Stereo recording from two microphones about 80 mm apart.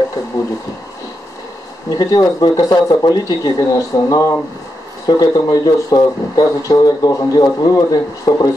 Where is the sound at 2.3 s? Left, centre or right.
Left.